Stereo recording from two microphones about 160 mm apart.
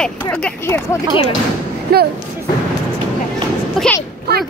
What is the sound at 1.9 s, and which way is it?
Speech, 75° right (ahead or behind).